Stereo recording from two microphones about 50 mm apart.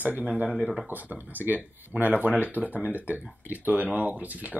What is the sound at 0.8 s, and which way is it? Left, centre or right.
Speech, right.